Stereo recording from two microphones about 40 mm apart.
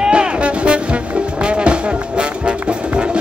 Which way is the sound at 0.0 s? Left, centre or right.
Right.